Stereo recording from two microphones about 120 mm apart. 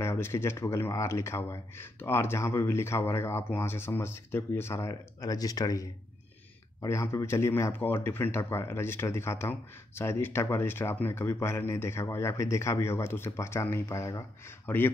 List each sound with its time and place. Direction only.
0.0 s speech: 20° left (ahead or behind)
14.7 s speech: 15° left (ahead or behind)